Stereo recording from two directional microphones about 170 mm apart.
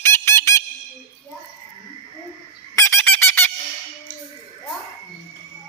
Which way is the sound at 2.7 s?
15° left (ahead or behind).